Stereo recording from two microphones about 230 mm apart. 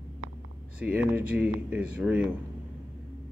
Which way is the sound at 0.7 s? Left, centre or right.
Centre.